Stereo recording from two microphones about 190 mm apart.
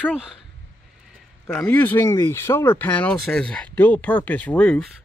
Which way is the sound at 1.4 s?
5° left (ahead or behind).